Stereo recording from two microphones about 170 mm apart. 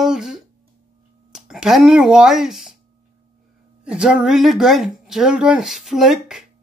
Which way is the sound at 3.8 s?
5° right (ahead or behind).